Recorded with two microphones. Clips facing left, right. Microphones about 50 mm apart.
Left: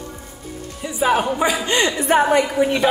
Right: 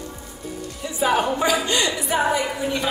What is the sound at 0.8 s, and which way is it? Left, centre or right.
Speech, centre.